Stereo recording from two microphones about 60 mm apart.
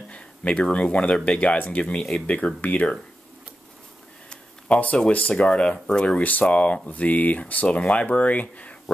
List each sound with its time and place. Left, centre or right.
0.1 s a sound: left
0.9 s speech: left
2.0 s speech: centre
2.2 s speech: left
4.3 s a sound: left
5.3 s speech: centre